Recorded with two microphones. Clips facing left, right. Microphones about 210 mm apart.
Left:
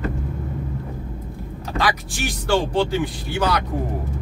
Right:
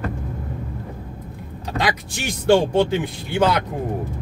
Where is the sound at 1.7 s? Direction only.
20° right (ahead or behind).